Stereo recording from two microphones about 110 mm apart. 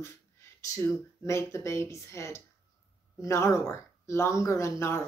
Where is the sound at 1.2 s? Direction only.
25° left (ahead or behind).